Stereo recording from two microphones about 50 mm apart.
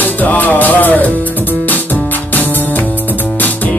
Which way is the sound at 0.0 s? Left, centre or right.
Left.